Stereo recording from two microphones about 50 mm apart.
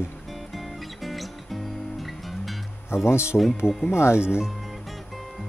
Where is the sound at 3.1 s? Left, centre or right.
Left.